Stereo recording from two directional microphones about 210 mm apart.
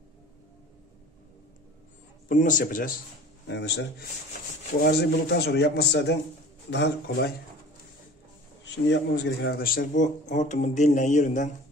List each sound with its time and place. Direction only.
2.2 s speech: 40° left (ahead or behind)
3.4 s a man's voice: 55° left (ahead or behind)
8.6 s speech: 55° left (ahead or behind); by 11.5 s 35° left (ahead or behind)